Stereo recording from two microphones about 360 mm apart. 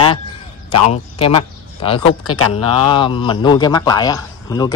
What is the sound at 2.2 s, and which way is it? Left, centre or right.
Speech, left.